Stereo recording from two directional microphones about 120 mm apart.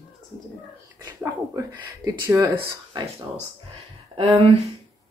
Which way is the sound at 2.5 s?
40° right (ahead or behind).